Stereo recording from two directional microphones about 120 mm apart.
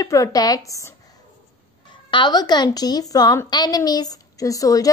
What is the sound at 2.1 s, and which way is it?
A woman's voice, 35° left (ahead or behind).